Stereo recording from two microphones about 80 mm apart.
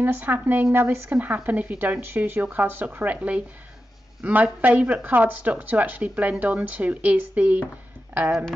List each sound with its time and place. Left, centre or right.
0.0 s speech: right